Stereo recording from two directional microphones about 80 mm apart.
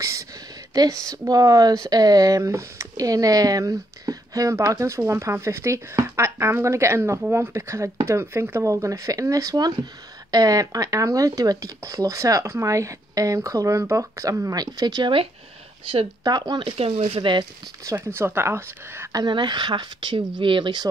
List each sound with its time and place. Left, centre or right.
0.0 s a sound: right
0.7 s speech: right
16.3 s speech: right
17.2 s speech: right
18.0 s speech: right
19.1 s speech: right